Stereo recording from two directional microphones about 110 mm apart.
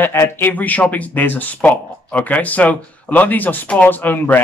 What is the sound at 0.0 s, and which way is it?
Speech, 20° left (ahead or behind).